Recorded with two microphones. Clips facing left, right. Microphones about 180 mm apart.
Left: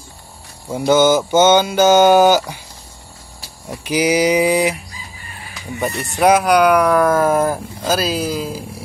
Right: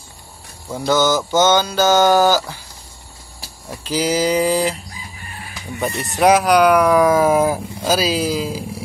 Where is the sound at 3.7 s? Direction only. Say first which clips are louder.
Left 3 dB; 15° left (ahead or behind).